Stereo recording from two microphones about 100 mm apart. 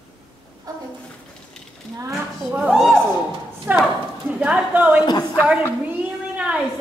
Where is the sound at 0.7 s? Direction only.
40° right (ahead or behind).